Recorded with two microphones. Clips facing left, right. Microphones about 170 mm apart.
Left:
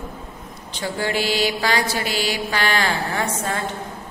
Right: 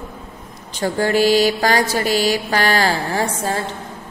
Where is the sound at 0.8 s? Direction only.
45° right (ahead or behind).